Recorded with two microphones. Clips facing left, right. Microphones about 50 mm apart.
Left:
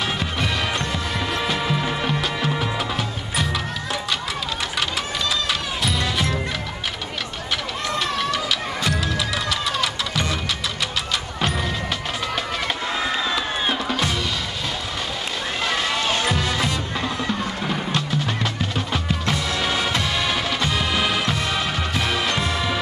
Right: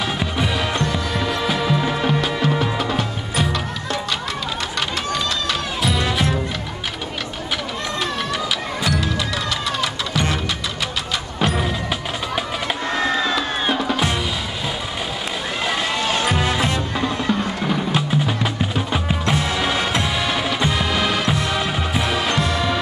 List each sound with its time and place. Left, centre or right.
0.0 s music: centre
5.5 s music: centre
9.5 s vehicle: centre
12.6 s music: centre
16.3 s music: centre
16.9 s music: centre
22.4 s music: centre